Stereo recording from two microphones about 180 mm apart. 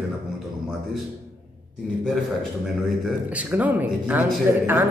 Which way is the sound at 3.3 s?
10° right (ahead or behind).